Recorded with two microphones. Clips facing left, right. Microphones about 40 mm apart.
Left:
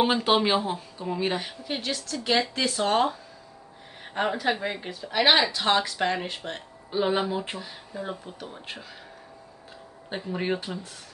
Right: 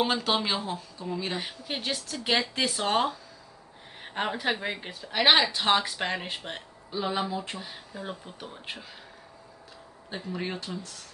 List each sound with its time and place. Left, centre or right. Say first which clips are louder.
0.0 s speech: left 4 dB; centre
1.4 s speech: left 2 dB; centre
4.0 s a sound: left 4 dB; centre
4.4 s speech: left 2 dB; centre
6.9 s speech: left 5 dB; left
7.6 s speech: left 3 dB; centre
10.2 s speech: left 5 dB; centre